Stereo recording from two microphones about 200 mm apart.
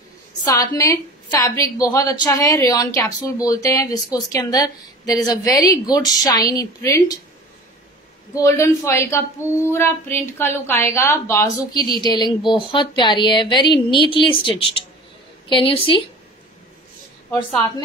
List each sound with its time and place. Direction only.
0.4 s a woman's voice: 20° left (ahead or behind)
8.4 s a woman's voice: 15° left (ahead or behind)